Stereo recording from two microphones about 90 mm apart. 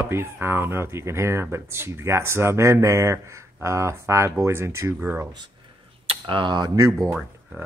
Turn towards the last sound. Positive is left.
turn(degrees=-25)  # may be behind; listen again after turning